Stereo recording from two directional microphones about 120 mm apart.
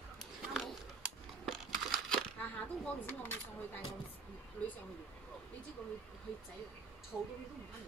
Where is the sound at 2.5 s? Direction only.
15° left (ahead or behind).